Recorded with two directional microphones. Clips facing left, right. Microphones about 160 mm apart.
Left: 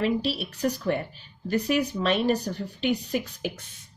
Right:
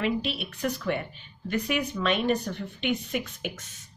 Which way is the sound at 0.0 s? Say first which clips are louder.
Left 3 dB; 35° left (ahead or behind).